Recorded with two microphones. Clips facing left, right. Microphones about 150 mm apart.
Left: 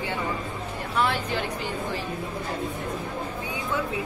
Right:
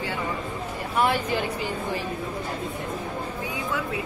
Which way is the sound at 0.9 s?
10° right (ahead or behind).